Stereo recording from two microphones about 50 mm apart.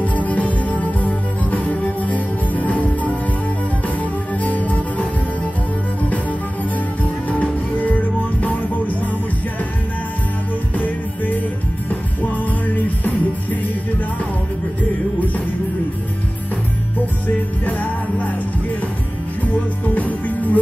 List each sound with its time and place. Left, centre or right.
0.0 s music: left
7.2 s music: left
11.9 s music: left
17.6 s music: left
19.4 s music: left